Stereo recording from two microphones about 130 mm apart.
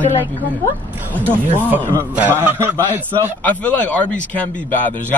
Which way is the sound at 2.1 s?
15° right (ahead or behind).